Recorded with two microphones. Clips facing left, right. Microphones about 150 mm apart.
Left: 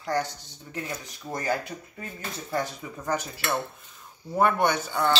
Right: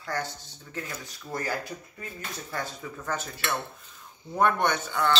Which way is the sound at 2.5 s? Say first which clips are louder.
Left 6 dB; 20° left (ahead or behind).